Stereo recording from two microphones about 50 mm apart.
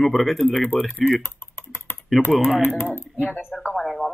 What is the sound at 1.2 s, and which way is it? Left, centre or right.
Typing, left.